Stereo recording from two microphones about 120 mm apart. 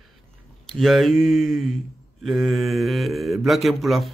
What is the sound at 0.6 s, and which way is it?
Speech, centre (ahead or behind).